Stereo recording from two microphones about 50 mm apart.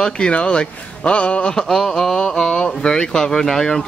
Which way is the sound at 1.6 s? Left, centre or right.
Centre.